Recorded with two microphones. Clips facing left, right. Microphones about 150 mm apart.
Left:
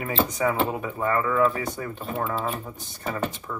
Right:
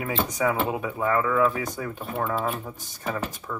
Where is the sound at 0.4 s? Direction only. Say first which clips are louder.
Right 2 dB; 10° right (ahead or behind).